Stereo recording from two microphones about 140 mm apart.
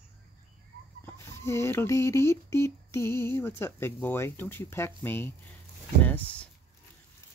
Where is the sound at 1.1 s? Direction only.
20° left (ahead or behind).